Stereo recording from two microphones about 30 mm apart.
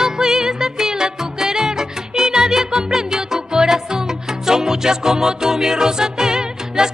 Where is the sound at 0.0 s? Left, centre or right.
Centre.